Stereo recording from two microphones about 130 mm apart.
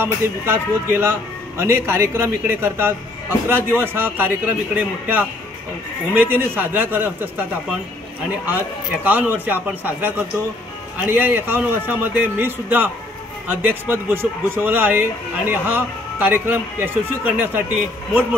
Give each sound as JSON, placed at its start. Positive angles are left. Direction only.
{"t": 0.0, "sound": "a man's voice", "side_deg": -15}
{"t": 8.5, "sound": "a man's voice", "side_deg": -15}